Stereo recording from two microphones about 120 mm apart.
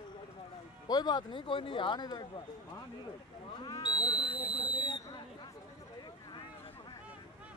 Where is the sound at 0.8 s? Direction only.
35° left (ahead or behind).